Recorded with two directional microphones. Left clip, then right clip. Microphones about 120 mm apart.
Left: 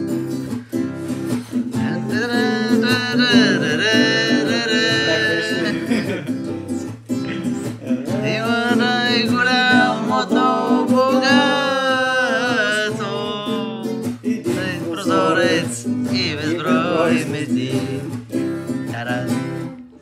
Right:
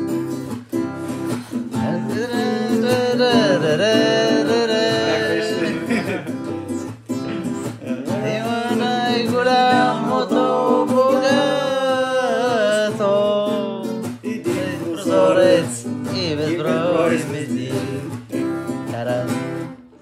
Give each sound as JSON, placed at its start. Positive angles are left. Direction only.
{"t": 2.5, "sound": "music", "side_deg": -15}
{"t": 8.1, "sound": "music", "side_deg": -20}
{"t": 9.5, "sound": "music", "side_deg": -35}
{"t": 10.3, "sound": "music", "side_deg": -20}
{"t": 13.0, "sound": "music", "side_deg": -55}
{"t": 15.0, "sound": "music", "side_deg": -20}
{"t": 16.1, "sound": "music", "side_deg": -40}